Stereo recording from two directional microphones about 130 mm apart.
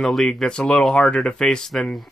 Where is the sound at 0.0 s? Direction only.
Centre (ahead or behind).